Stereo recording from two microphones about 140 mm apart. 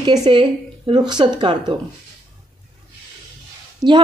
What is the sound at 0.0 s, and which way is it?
Speech, 30° right (ahead or behind).